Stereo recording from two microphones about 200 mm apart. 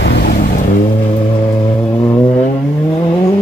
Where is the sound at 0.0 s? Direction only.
50° left (ahead or behind).